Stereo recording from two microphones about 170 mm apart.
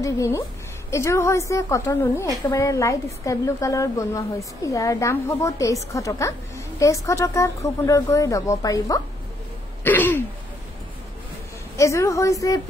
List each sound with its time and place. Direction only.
0.0 s a woman's voice: 20° left (ahead or behind)
11.7 s a woman's voice: 15° left (ahead or behind)